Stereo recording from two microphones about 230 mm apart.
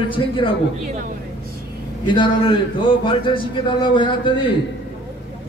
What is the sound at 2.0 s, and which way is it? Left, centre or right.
A man's voice, centre.